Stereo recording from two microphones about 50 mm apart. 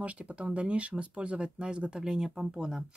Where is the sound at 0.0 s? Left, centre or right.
Right.